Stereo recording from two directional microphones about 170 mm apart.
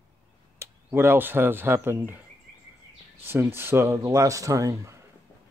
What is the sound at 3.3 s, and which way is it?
A man's voice, 15° right (ahead or behind).